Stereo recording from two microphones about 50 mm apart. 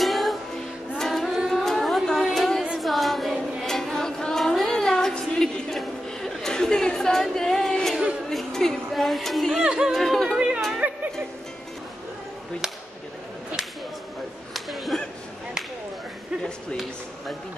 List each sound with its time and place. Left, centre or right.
0.0 s music: centre
1.5 s carnatic music: centre
2.2 s a sound: centre
3.6 s music: centre
5.4 s a sound: centre
8.3 s music: centre
9.9 s chatter: centre
10.8 s music: right
14.5 s a sound: centre